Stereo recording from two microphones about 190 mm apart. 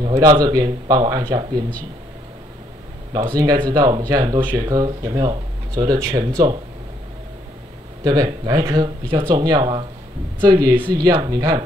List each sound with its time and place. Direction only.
0.0 s speech: 20° right (ahead or behind)
3.1 s speech: 20° right (ahead or behind)
8.0 s speech: 20° right (ahead or behind)